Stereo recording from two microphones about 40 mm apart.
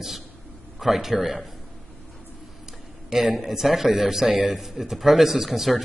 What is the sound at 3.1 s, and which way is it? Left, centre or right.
A man's voice, centre.